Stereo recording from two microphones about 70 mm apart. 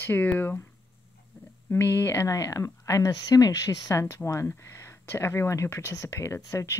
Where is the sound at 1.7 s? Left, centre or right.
Left.